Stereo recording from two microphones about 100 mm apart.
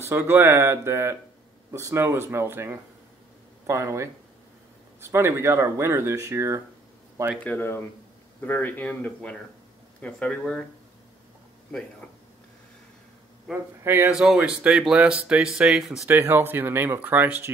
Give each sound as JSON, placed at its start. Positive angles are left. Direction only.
{"t": 0.0, "sound": "speech", "side_deg": -25}
{"t": 7.4, "sound": "speech", "side_deg": 20}
{"t": 13.5, "sound": "speech", "side_deg": -20}
{"t": 14.1, "sound": "speech", "side_deg": -5}
{"t": 16.1, "sound": "speech", "side_deg": -20}